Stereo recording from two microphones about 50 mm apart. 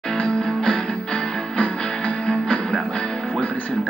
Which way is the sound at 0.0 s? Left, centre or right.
Centre.